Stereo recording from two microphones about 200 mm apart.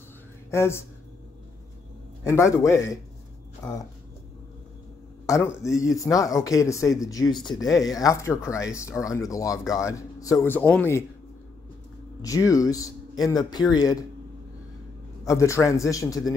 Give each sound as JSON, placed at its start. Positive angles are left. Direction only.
{"t": 0.5, "sound": "a man's voice", "side_deg": 15}
{"t": 2.2, "sound": "a man's voice", "side_deg": 15}
{"t": 5.2, "sound": "a man's voice", "side_deg": 15}
{"t": 12.2, "sound": "a man's voice", "side_deg": 15}
{"t": 15.2, "sound": "a man's voice", "side_deg": 15}